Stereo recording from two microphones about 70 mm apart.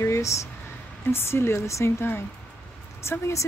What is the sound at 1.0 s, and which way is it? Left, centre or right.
Speech, left.